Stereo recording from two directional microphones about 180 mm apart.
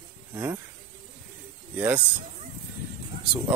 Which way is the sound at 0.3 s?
20° right (ahead or behind).